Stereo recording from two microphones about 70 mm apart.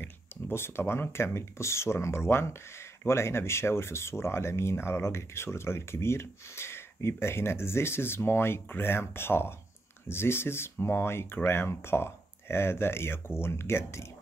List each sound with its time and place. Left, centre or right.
0.0 s speech: left